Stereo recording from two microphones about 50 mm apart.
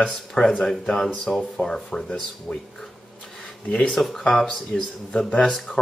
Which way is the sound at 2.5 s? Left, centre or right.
Left.